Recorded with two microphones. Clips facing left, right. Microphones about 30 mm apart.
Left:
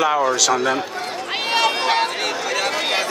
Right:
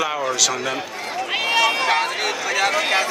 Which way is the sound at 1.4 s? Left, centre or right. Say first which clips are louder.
Even; left.